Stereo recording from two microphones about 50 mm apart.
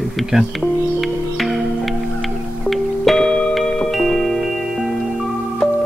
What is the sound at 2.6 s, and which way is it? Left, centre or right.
Music, centre.